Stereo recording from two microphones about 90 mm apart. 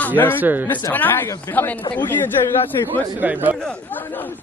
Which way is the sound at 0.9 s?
20° left (ahead or behind).